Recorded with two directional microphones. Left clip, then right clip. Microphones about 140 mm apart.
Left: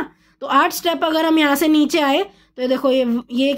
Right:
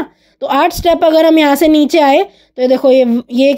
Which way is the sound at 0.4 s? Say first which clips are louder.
Right 4 dB; 30° right (ahead or behind).